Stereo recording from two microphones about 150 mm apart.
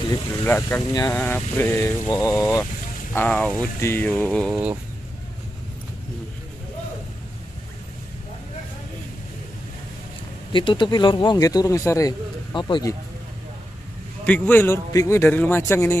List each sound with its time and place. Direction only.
0.1 s speech: 15° left (ahead or behind)
3.1 s speech: 10° left (ahead or behind)
10.5 s speech: 35° left (ahead or behind)
14.2 s speech: 10° left (ahead or behind)